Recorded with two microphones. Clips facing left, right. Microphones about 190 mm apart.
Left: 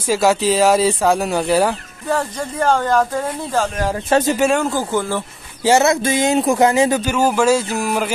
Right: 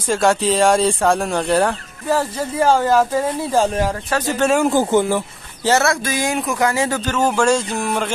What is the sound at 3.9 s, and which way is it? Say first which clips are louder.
Speech: left 5 dB; 25° left (ahead or behind).